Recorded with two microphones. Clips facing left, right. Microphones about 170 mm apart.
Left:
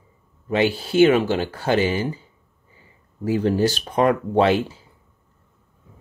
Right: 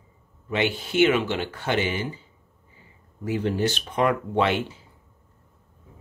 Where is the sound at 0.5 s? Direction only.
35° left (ahead or behind).